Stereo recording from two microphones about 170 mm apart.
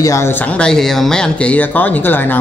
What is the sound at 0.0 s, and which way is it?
Speech, 15° left (ahead or behind).